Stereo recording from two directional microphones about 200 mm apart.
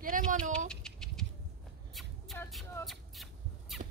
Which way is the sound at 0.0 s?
45° right (ahead or behind).